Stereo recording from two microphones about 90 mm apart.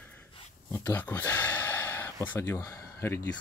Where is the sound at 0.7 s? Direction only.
20° left (ahead or behind).